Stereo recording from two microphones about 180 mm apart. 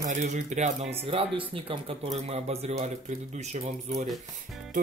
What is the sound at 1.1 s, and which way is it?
Speech, 30° right (ahead or behind).